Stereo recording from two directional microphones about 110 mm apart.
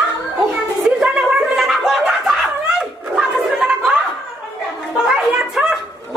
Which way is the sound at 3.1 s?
10° right (ahead or behind).